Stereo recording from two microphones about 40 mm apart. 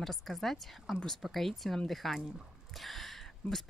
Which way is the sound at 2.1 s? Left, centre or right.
Centre.